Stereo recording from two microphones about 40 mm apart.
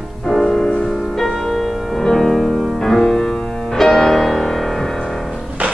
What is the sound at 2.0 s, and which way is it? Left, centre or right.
Music, centre.